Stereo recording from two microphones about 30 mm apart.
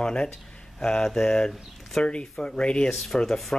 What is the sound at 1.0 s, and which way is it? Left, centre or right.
Speech, centre.